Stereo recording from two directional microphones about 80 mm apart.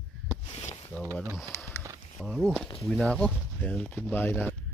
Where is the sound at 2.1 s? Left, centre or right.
Centre.